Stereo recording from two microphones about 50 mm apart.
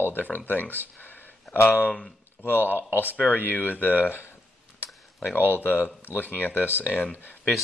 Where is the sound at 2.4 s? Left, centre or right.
Left.